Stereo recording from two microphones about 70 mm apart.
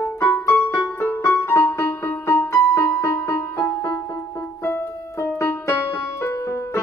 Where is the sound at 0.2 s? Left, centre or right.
Left.